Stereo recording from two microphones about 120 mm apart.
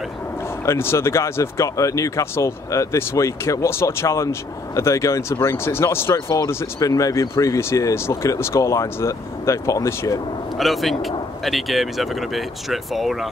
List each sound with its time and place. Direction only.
0.7 s speech: 20° left (ahead or behind)
10.6 s speech: centre (ahead or behind)